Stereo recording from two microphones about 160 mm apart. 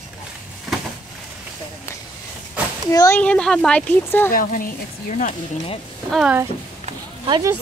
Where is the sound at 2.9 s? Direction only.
20° left (ahead or behind).